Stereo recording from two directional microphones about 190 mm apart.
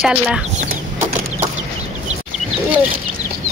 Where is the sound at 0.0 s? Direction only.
5° right (ahead or behind).